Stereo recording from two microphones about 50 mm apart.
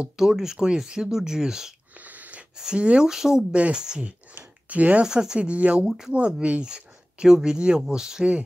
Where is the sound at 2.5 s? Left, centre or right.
Centre.